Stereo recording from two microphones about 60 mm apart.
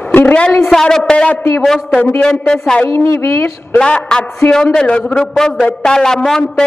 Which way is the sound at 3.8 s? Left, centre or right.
Centre.